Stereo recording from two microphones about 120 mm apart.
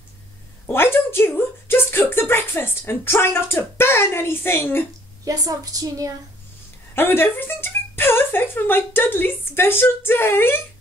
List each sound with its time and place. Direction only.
0.7 s a sound: 20° left (ahead or behind)
5.2 s a woman's voice: 30° right (ahead or behind)
6.9 s speech: 20° left (ahead or behind)